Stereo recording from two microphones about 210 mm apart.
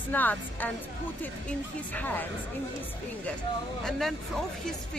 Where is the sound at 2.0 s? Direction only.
10° left (ahead or behind).